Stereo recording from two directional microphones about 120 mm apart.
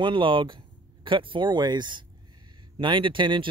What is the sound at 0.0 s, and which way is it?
Speech, 45° right (ahead or behind).